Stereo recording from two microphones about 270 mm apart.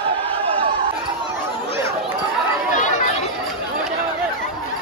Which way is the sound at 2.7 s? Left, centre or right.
Left.